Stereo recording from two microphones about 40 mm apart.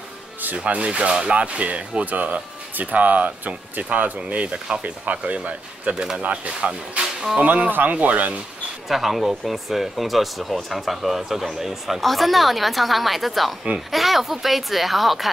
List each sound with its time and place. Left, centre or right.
0.7 s speech: right
8.8 s speech: centre